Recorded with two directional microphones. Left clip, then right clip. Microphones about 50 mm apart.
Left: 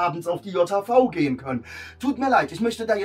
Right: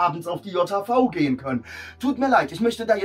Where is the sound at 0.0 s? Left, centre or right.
Left.